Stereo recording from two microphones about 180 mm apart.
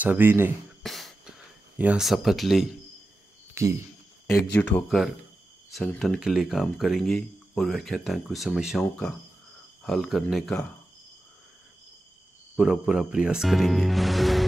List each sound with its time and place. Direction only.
0.0 s speech: 10° right (ahead or behind)
0.8 s a sound: centre (ahead or behind)
1.8 s speech: 5° right (ahead or behind)
3.6 s speech: 15° right (ahead or behind)
4.3 s speech: 15° left (ahead or behind)
12.5 s speech: centre (ahead or behind)